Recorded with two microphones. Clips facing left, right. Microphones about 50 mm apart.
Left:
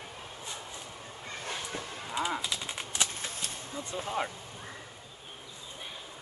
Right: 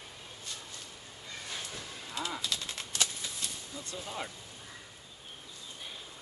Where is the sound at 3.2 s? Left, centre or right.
Left.